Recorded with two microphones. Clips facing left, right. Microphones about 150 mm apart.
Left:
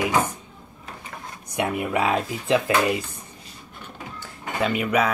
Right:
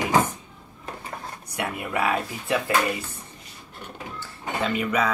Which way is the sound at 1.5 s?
20° left (ahead or behind).